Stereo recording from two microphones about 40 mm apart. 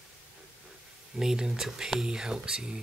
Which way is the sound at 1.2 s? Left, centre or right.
Centre.